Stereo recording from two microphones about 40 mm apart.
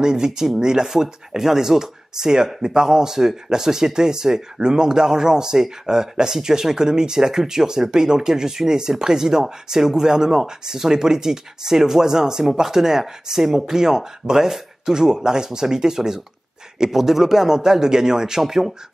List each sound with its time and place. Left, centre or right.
0.0 s speech: centre